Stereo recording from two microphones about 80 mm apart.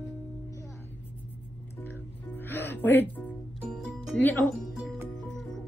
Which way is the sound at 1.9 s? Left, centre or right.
Left.